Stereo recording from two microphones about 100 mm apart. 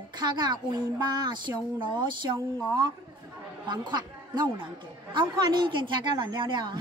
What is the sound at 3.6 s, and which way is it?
A woman's voice, 45° right (ahead or behind).